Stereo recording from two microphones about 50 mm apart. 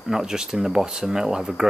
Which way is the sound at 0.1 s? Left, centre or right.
Centre.